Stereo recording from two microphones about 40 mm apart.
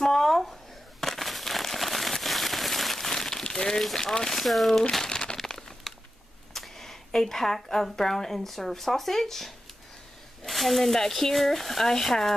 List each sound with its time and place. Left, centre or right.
0.0 s a sound: centre
1.0 s crumpling: centre
3.9 s a woman's voice: centre
4.3 s speech: centre
4.9 s crumpling: centre
5.5 s a sound: centre
7.2 s a woman's voice: centre